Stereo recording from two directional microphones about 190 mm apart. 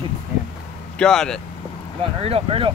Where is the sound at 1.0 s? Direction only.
5° left (ahead or behind).